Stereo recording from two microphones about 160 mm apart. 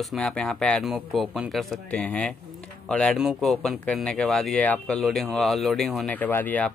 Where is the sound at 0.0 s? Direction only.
Centre (ahead or behind).